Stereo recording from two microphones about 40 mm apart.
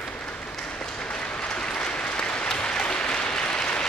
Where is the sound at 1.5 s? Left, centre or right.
Left.